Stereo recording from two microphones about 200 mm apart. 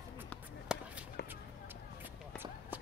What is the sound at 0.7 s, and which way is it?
Chop, 5° right (ahead or behind).